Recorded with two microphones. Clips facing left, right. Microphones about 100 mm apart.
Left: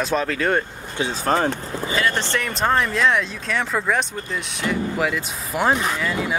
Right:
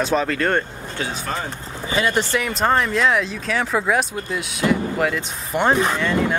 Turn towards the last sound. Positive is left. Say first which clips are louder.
# right 4 dB
turn(degrees=5)  # may be behind; listen again after turning